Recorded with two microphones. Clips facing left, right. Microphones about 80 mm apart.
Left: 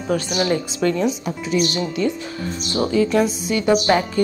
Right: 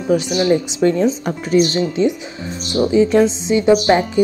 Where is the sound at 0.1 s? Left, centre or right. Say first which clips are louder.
Right 6 dB; centre.